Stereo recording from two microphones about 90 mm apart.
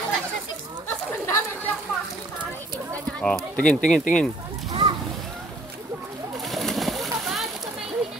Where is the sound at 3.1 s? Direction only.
10° left (ahead or behind).